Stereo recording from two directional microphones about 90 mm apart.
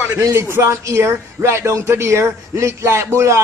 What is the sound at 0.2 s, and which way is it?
Speech, 30° right (ahead or behind).